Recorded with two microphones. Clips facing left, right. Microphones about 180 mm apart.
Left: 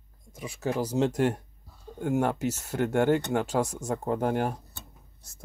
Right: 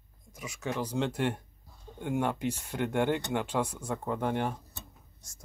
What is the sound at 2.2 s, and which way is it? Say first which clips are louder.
Speech: left 1 dB; 40° left (ahead or behind).